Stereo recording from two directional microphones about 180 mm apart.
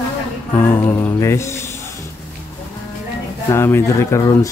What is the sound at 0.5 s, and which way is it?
Music, 10° left (ahead or behind).